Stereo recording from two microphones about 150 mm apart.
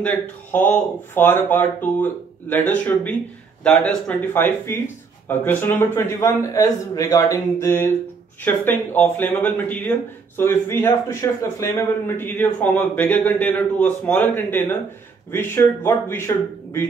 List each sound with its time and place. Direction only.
0.0 s speech: 10° left (ahead or behind)